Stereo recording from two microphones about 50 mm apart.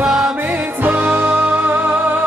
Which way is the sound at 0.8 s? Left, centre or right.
Right.